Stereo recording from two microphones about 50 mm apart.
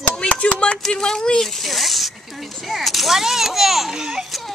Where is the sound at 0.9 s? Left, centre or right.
Centre.